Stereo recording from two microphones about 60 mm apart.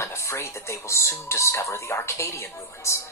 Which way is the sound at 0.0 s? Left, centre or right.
Left.